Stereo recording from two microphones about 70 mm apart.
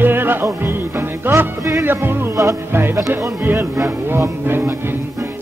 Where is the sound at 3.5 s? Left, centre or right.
Right.